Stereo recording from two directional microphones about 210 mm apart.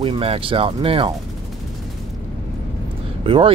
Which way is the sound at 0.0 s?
25° right (ahead or behind).